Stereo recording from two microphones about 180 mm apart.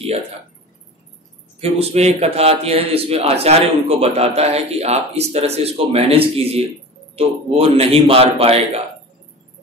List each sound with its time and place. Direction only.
1.6 s speech: 35° right (ahead or behind)